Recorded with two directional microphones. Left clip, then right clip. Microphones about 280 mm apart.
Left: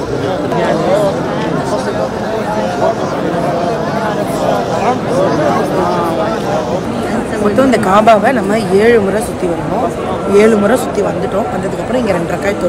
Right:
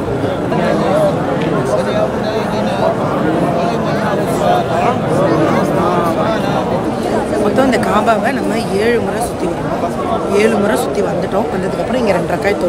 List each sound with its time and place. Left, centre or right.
7.9 s speech: centre